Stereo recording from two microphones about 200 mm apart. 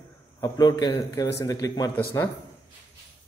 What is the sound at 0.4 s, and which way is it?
A man's voice, 20° left (ahead or behind).